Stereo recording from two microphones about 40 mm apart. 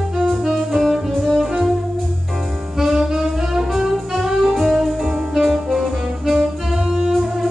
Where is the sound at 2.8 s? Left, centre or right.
Centre.